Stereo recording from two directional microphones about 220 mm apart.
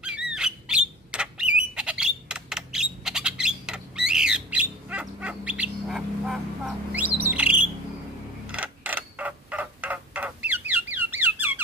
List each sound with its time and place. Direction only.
0.0 s a sound: 5° right (ahead or behind)
1.6 s bird: 5° right (ahead or behind)
8.5 s creak: 5° right (ahead or behind)